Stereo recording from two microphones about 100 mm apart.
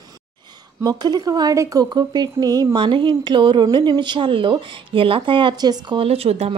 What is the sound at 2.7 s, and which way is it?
A woman's voice, 55° right (ahead or behind).